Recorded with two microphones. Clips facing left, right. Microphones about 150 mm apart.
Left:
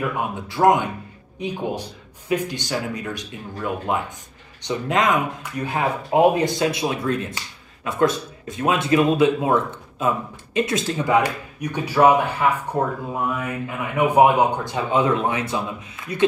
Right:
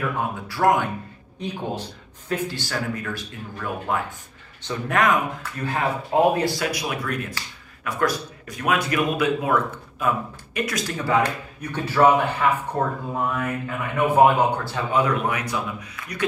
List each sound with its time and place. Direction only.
0.0 s a man's voice: 20° left (ahead or behind)